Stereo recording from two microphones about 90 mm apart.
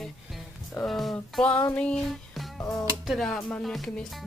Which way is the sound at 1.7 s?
10° left (ahead or behind).